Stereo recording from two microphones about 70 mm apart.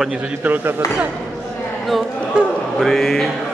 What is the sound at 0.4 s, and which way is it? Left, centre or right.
Speech, right.